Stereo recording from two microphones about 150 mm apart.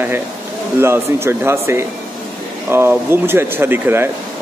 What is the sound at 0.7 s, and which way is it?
Speech, 15° right (ahead or behind).